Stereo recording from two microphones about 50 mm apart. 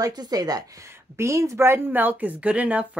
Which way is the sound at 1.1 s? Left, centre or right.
Right.